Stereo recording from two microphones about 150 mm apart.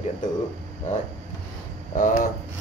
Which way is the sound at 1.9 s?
65° left (ahead or behind).